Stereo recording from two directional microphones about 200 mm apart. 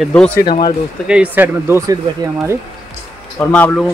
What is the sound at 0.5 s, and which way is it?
Speech, 20° left (ahead or behind).